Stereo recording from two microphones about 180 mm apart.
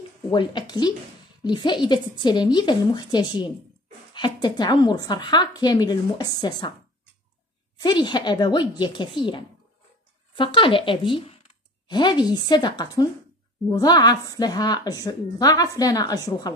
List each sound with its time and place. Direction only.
0.3 s a woman's voice: 25° left (ahead or behind)
7.8 s a woman's voice: 25° left (ahead or behind)